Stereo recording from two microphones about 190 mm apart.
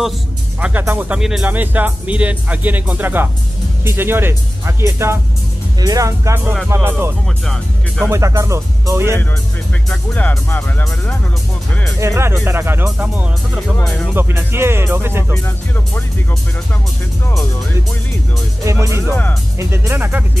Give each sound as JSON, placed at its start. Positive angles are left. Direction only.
{"t": 0.6, "sound": "speech", "side_deg": -10}
{"t": 9.8, "sound": "speech", "side_deg": 10}
{"t": 12.0, "sound": "speech", "side_deg": -15}
{"t": 13.8, "sound": "speech", "side_deg": 5}
{"t": 14.1, "sound": "speech", "side_deg": -15}
{"t": 15.4, "sound": "speech", "side_deg": 10}
{"t": 18.7, "sound": "speech", "side_deg": -15}